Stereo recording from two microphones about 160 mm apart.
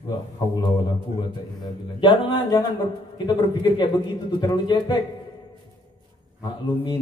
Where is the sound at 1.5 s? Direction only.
30° left (ahead or behind).